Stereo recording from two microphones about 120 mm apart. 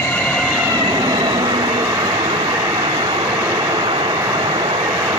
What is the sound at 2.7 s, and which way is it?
Vehicle, 40° right (ahead or behind).